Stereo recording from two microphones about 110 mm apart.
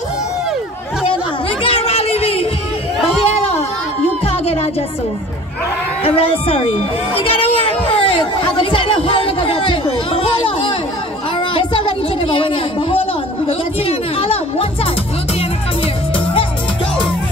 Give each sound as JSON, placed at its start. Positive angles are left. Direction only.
{"t": 1.6, "sound": "a sound", "side_deg": 55}
{"t": 4.2, "sound": "music", "side_deg": 65}
{"t": 6.0, "sound": "speech", "side_deg": 60}
{"t": 7.3, "sound": "chatter", "side_deg": 60}
{"t": 11.3, "sound": "a sound", "side_deg": 50}
{"t": 13.5, "sound": "speech", "side_deg": 60}